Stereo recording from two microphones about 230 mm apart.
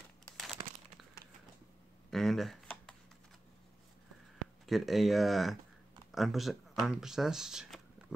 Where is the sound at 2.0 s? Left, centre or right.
Centre.